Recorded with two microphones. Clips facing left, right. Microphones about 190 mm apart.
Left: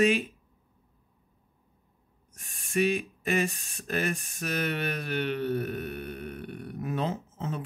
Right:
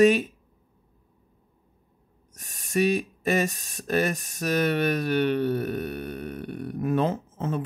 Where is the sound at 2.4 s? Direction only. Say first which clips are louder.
Right 3 dB; 40° right (ahead or behind).